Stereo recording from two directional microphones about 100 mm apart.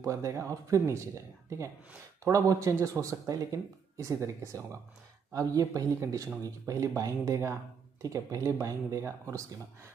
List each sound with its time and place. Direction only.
0.0 s speech: 30° right (ahead or behind)